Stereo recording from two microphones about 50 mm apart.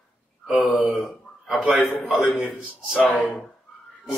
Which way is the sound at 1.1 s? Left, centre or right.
Centre.